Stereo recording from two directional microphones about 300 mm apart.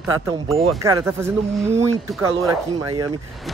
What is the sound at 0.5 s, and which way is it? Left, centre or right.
Speech, centre.